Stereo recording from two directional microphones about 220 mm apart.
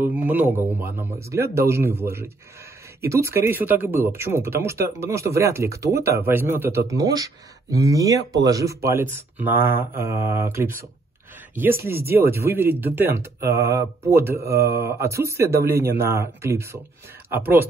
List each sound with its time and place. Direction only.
0.0 s speech: 10° right (ahead or behind)